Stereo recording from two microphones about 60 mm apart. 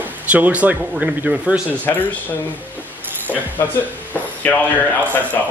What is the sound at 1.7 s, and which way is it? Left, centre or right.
Speech, left.